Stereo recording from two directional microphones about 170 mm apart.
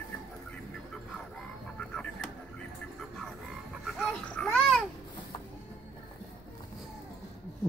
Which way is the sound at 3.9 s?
5° left (ahead or behind).